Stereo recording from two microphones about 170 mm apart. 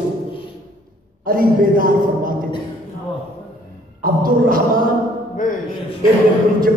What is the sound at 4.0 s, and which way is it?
Speech, 55° right (ahead or behind).